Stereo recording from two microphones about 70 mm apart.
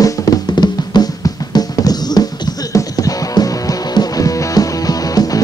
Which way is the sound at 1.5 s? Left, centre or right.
Left.